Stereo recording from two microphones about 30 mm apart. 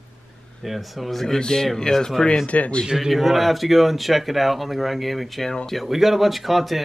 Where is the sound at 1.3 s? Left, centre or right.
Centre.